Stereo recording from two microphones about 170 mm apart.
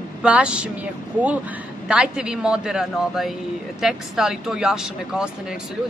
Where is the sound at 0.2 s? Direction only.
5° right (ahead or behind).